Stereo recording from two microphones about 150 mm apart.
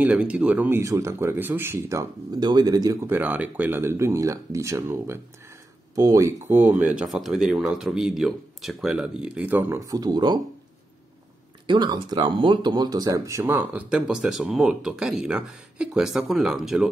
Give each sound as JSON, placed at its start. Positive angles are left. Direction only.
{"t": 0.0, "sound": "speech", "side_deg": -10}
{"t": 11.6, "sound": "speech", "side_deg": -30}